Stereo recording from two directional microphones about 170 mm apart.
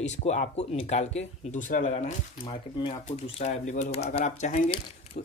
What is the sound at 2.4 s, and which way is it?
Speech, 30° left (ahead or behind).